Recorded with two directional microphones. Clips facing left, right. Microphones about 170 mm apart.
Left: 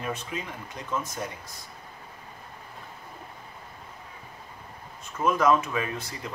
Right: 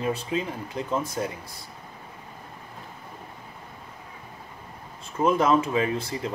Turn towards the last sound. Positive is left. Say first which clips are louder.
# right 7 dB
turn(degrees=-25)  # may be behind; listen again after turning